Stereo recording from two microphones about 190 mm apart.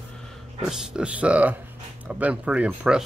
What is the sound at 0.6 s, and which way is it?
Speech, 5° right (ahead or behind).